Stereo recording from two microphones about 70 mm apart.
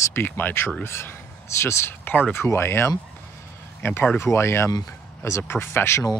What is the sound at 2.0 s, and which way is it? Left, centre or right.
Speech, left.